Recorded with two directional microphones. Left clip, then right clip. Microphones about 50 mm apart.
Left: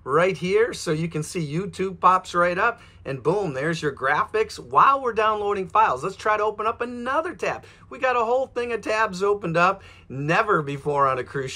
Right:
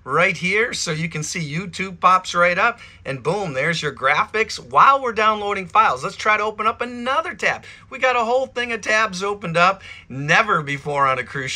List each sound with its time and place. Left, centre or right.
0.1 s speech: left